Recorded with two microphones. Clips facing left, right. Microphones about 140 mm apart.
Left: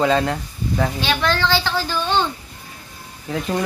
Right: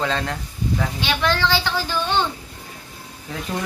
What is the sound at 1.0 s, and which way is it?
A woman's voice, 15° right (ahead or behind).